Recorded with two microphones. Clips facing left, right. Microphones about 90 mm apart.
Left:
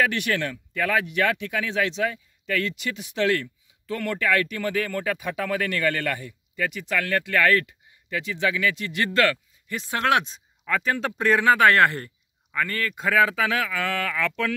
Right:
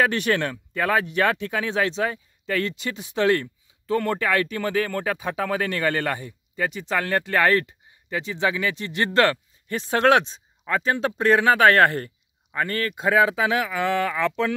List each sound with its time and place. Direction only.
0.0 s speech: 35° right (ahead or behind)